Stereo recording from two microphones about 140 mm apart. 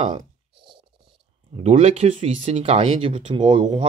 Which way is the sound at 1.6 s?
50° right (ahead or behind).